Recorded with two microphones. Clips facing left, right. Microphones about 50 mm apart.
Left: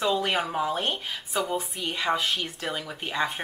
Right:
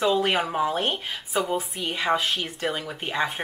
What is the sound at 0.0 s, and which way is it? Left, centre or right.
Speech, centre.